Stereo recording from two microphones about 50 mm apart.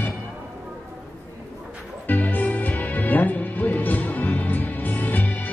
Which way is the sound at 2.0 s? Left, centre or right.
Left.